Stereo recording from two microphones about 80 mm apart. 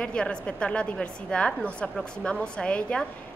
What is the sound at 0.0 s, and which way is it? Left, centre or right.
A woman's voice, centre.